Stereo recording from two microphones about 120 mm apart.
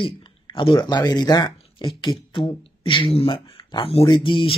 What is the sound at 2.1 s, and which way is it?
Speech, 50° left (ahead or behind).